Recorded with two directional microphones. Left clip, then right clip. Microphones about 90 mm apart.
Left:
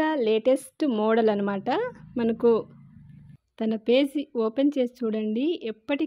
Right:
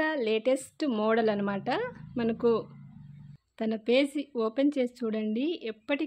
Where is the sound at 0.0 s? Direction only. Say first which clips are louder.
Left 5 dB; 40° left (ahead or behind).